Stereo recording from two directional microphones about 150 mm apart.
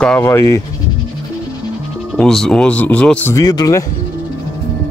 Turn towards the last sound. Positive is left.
turn(degrees=25)  # may be behind; listen again after turning